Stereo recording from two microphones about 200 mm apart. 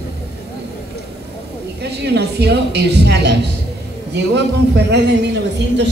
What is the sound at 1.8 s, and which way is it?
A woman's voice, 55° right (ahead or behind).